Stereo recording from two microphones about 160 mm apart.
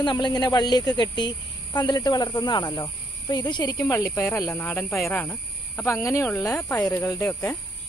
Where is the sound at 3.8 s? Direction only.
15° left (ahead or behind).